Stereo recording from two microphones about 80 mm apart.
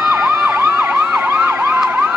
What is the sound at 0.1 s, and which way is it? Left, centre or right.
Emergency vehicle, right.